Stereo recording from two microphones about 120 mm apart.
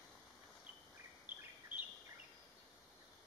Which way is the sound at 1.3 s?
15° right (ahead or behind).